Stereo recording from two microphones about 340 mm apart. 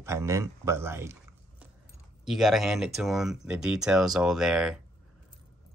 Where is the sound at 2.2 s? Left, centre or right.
Centre.